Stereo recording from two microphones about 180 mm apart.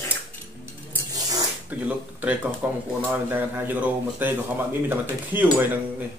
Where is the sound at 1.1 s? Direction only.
20° right (ahead or behind).